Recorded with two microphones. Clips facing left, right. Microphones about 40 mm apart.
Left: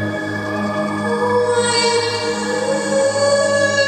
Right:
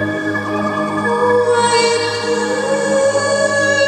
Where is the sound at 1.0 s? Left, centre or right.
Right.